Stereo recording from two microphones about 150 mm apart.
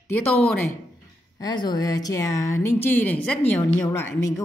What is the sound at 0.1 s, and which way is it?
Speech, 10° left (ahead or behind).